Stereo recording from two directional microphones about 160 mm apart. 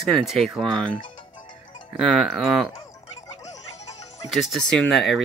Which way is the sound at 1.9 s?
Centre (ahead or behind).